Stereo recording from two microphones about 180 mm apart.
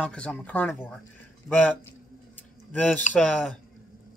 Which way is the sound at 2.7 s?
10° left (ahead or behind).